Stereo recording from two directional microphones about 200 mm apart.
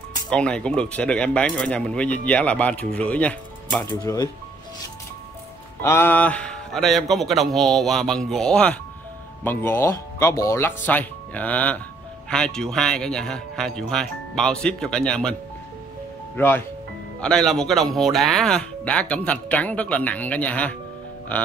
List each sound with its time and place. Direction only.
0.3 s speech: 5° left (ahead or behind)
3.9 s speech: 15° left (ahead or behind)
5.8 s speech: 10° left (ahead or behind)
16.3 s speech: 10° left (ahead or behind)